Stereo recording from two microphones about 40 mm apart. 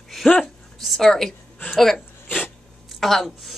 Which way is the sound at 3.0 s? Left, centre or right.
Centre.